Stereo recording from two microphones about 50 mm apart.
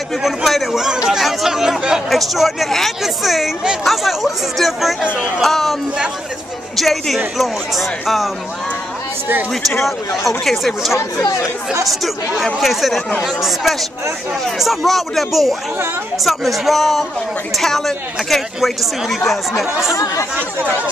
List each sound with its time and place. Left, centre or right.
0.2 s speech: centre
6.8 s speech: centre
9.8 s speech: centre
14.6 s speech: centre
19.9 s speech: left